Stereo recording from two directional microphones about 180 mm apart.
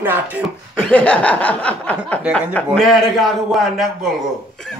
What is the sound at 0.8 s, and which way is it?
A man's voice, 10° left (ahead or behind).